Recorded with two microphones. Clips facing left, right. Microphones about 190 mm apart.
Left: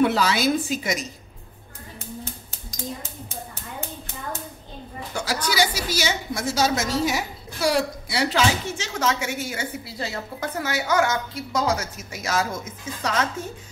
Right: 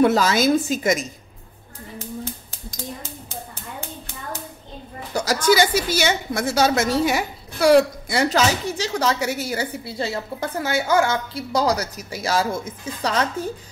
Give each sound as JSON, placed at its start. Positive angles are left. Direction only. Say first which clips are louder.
{"t": 0.0, "sound": "a woman's voice", "louder": "right 3 dB", "side_deg": -45}
{"t": 5.1, "sound": "a woman's voice", "louder": "right 8 dB", "side_deg": -40}